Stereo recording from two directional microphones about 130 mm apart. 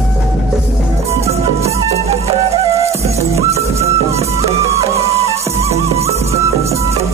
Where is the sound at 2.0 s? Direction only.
50° right (ahead or behind).